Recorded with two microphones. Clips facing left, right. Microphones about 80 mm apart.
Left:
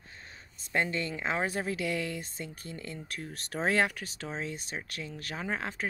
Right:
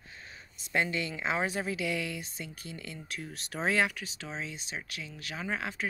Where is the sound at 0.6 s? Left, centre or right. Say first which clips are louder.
Even; left.